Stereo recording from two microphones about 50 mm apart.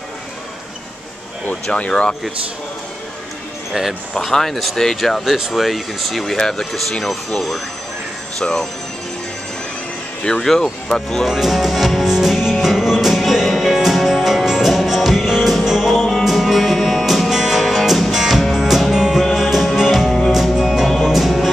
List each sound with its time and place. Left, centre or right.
1.5 s speech: left
4.1 s speech: centre
10.2 s speech: centre
11.2 s music: centre
16.0 s music: centre